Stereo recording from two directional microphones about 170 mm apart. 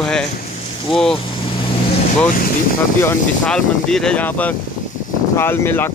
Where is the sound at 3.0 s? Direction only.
10° left (ahead or behind).